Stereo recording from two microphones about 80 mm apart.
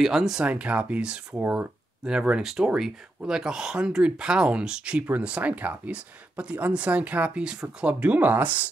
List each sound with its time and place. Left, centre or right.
0.0 s speech: centre
1.4 s speech: right
2.0 s speech: centre